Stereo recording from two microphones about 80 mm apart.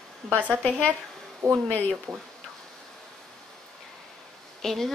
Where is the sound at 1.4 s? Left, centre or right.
Right.